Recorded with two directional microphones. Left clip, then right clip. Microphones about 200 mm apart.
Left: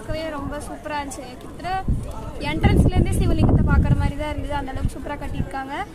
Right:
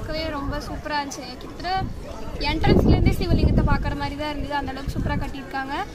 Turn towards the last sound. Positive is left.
turn(degrees=5)  # may be behind; listen again after turning